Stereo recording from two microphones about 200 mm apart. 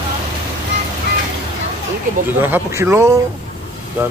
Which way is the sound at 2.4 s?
10° right (ahead or behind).